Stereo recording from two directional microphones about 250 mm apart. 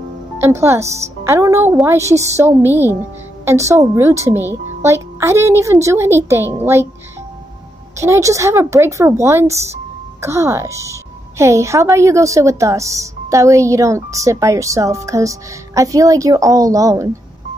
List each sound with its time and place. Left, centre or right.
0.4 s a woman's voice: centre
8.0 s a woman's voice: centre